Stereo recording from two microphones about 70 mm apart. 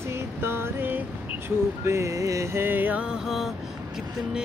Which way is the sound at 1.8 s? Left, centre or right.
Right.